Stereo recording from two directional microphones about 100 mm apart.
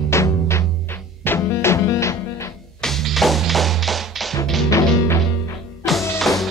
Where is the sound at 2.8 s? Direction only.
Centre (ahead or behind).